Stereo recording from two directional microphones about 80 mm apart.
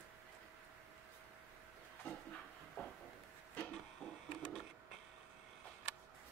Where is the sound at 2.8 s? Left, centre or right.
Left.